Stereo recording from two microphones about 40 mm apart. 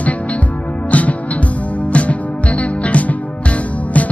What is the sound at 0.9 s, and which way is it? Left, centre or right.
Music, left.